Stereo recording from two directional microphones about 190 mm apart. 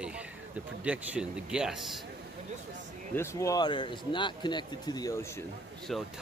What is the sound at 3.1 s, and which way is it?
Speech, 15° left (ahead or behind).